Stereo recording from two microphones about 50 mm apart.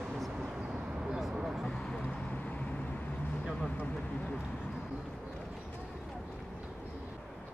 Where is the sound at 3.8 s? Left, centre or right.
Left.